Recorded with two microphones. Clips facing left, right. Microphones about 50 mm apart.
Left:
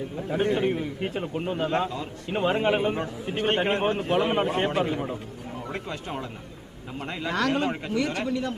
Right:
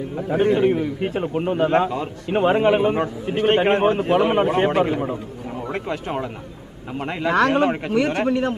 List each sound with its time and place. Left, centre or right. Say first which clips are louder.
0.4 s a man's voice: right 7 dB; centre
1.9 s speech: right 7 dB; right
2.3 s a man's voice: right 7 dB; right
2.6 s a man's voice: right 6 dB; centre
3.3 s a man's voice: right 7 dB; right
4.1 s a man's voice: right 6 dB; centre; by 8.5 s right